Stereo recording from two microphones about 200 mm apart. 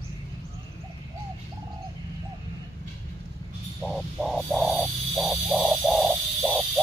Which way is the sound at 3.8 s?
Centre (ahead or behind).